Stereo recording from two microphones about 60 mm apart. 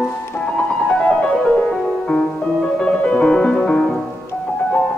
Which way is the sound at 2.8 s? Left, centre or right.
Centre.